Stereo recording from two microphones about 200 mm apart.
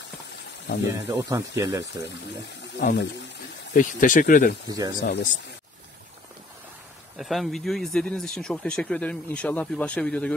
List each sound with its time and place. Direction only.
1.0 s speech: 15° right (ahead or behind)
2.9 s speech: 60° left (ahead or behind)
3.7 s speech: 40° left (ahead or behind)
4.6 s speech: 20° right (ahead or behind)
5.0 s speech: 60° left (ahead or behind)
7.2 s speech: centre (ahead or behind)